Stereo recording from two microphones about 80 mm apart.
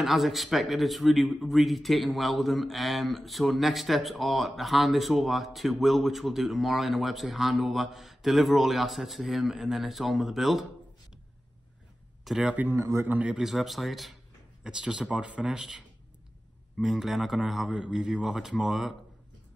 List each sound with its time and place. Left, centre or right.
0.0 s a man's voice: centre
12.3 s speech: centre
12.7 s a man's voice: right
13.1 s speech: centre
13.4 s a man's voice: centre